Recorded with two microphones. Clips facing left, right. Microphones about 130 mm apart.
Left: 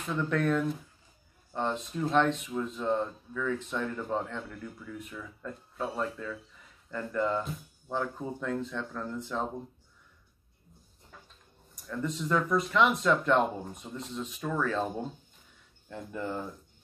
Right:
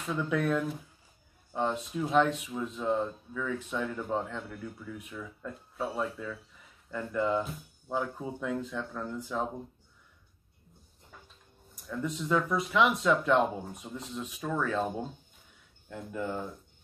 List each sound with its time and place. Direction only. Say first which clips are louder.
0.1 s speech: left 1 dB; 5° right (ahead or behind)
11.9 s speech: even; 5° right (ahead or behind)
15.9 s speech: even; centre (ahead or behind)